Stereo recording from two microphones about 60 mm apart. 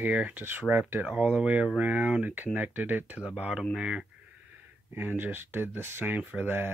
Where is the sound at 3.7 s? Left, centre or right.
Centre.